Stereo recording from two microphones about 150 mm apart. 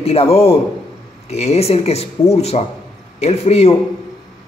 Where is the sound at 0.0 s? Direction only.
40° left (ahead or behind).